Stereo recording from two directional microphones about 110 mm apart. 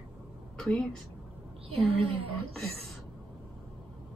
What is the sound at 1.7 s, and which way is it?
Speech, 60° right (ahead or behind).